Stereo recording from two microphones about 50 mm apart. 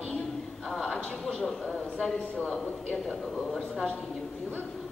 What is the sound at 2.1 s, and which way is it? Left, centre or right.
Speech, left.